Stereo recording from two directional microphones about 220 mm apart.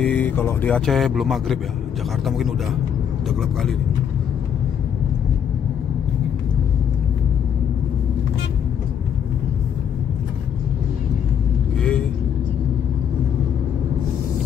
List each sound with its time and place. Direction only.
0.0 s speech: 5° left (ahead or behind)
11.8 s vehicle: 5° left (ahead or behind)